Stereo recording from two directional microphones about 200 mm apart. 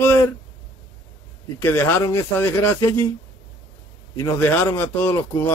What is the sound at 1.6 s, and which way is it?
Speech, 10° left (ahead or behind).